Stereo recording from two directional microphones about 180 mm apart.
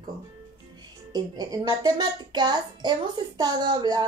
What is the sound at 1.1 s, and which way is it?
A child's voice, 20° right (ahead or behind).